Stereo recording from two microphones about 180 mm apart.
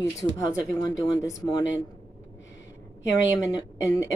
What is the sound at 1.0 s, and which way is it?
Speech, 20° left (ahead or behind).